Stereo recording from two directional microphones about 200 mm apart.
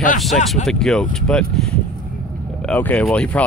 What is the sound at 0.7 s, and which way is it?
Speech, centre (ahead or behind).